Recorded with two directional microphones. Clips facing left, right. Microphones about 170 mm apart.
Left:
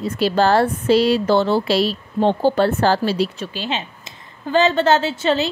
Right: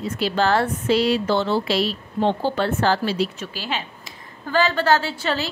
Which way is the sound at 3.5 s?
20° left (ahead or behind).